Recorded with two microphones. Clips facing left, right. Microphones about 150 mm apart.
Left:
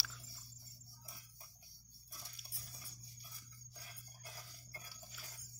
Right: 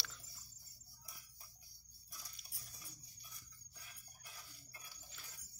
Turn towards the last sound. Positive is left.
turn(degrees=40)  # may be behind; listen again after turning